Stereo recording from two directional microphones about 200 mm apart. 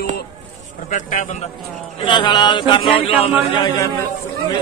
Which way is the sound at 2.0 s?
25° left (ahead or behind).